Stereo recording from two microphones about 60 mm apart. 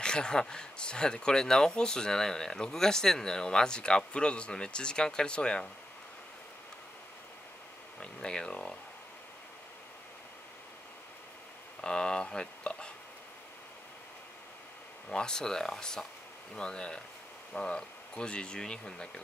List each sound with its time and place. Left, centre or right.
0.0 s speech: centre
8.0 s speech: centre
11.8 s speech: centre
15.0 s speech: centre